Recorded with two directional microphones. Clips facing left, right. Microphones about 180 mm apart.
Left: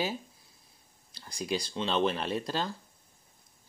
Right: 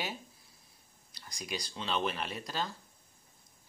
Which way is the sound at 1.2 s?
30° left (ahead or behind).